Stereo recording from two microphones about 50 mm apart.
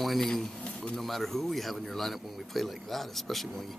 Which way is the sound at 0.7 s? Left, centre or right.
Left.